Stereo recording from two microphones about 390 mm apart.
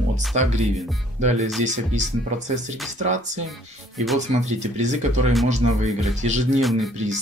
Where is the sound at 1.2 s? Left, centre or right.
Centre.